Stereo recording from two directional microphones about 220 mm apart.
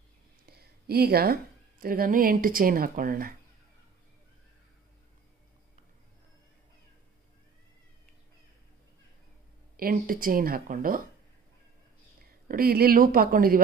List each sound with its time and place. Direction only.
0.5 s a woman's voice: 45° right (ahead or behind)
9.8 s speech: 40° right (ahead or behind)
12.4 s speech: 45° right (ahead or behind)